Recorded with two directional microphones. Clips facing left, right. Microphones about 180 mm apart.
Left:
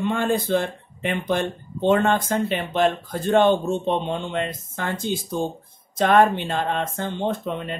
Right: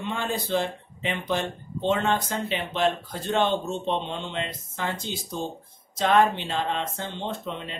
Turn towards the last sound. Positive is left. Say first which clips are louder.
# left 7 dB
turn(degrees=50)  # may be behind; listen again after turning